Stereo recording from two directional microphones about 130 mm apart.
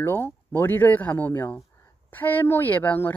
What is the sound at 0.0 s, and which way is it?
Speech, 15° left (ahead or behind).